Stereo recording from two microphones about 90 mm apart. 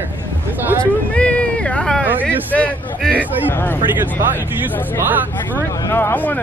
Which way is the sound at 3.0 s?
15° left (ahead or behind).